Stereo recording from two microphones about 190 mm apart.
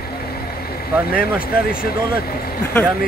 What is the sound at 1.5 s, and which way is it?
Speech, 50° left (ahead or behind).